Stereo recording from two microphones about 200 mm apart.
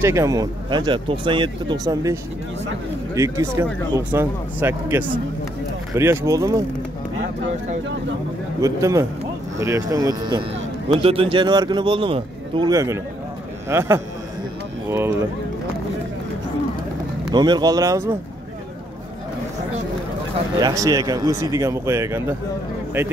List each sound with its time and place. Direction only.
0.0 s speech: 15° right (ahead or behind)
3.2 s speech: 15° right (ahead or behind)
8.5 s speech: 15° right (ahead or behind)
17.3 s speech: 20° right (ahead or behind)
20.5 s speech: 20° right (ahead or behind)